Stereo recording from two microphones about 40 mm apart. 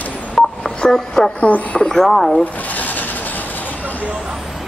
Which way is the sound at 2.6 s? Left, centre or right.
Left.